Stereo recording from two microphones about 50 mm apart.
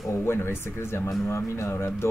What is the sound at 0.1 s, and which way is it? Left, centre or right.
Speech, left.